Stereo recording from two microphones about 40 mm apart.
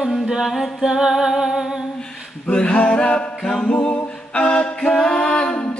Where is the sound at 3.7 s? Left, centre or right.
Left.